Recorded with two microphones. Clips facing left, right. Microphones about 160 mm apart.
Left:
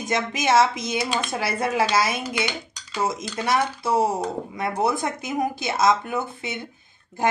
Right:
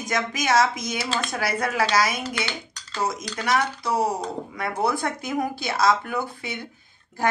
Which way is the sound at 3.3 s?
25° left (ahead or behind).